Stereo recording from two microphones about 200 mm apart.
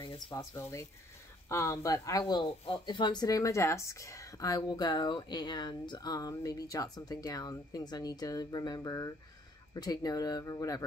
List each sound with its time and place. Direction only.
0.0 s speech: 25° left (ahead or behind)